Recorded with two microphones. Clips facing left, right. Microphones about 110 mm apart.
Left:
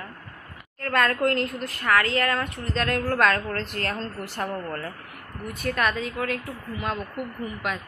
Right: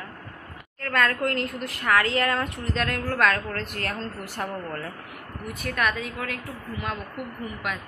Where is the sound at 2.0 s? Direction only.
20° right (ahead or behind).